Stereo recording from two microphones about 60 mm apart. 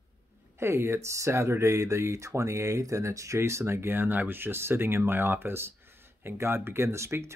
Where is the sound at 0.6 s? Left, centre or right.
Right.